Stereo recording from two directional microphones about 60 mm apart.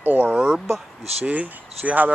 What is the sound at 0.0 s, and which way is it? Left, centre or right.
Speech, right.